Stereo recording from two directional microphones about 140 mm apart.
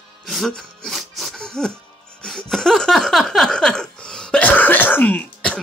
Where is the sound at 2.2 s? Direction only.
5° left (ahead or behind).